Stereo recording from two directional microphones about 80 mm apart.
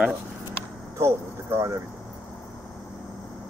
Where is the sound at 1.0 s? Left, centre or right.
Right.